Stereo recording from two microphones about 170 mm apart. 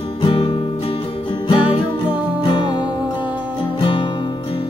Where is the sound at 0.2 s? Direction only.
30° left (ahead or behind).